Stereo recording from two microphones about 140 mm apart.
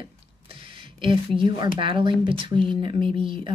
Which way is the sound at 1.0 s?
35° right (ahead or behind).